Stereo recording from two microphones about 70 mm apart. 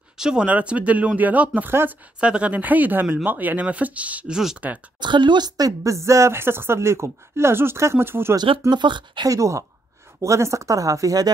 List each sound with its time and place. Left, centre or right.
0.2 s speech: centre; by 2.0 s right
2.1 s speech: centre
5.0 s speech: right
5.7 s speech: right
8.4 s speech: right
9.3 s speech: right